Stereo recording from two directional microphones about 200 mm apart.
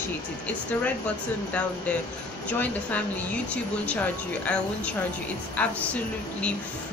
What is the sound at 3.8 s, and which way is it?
Speech, 5° left (ahead or behind).